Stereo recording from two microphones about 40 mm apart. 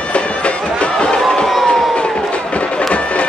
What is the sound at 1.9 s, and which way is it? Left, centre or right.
Run, left.